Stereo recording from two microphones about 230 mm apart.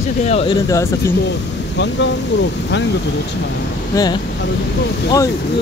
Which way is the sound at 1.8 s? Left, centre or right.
Left.